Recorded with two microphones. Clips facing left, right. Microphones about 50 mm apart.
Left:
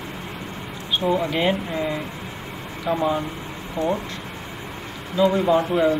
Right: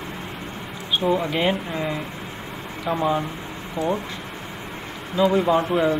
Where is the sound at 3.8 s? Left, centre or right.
Left.